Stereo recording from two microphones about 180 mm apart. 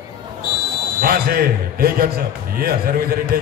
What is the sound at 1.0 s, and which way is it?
Speech, 55° right (ahead or behind).